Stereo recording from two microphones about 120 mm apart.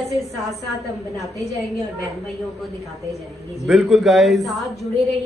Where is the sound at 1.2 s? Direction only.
65° left (ahead or behind).